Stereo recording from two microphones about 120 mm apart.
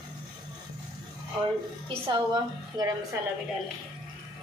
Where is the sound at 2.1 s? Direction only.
35° right (ahead or behind).